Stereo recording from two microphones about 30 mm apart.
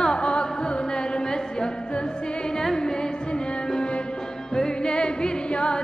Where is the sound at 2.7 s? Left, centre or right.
Left.